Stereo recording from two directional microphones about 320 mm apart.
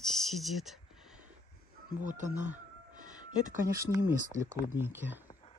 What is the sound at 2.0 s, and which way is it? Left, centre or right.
Speech, right.